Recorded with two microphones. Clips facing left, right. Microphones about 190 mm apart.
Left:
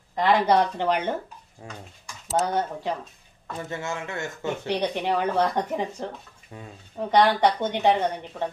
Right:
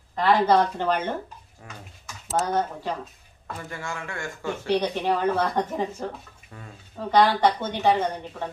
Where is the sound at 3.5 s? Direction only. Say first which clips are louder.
Left 4 dB; 20° left (ahead or behind).